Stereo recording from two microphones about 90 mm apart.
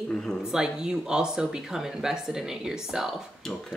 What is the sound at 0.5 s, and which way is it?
Speech, 5° right (ahead or behind).